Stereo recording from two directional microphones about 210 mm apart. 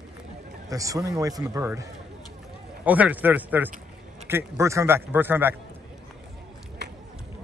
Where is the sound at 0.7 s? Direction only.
15° right (ahead or behind).